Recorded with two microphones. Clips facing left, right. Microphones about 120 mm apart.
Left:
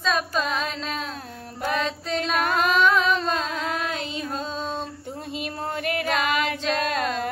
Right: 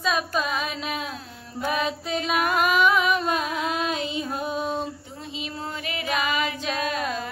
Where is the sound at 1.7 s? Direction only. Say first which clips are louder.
Left 1 dB; 10° right (ahead or behind).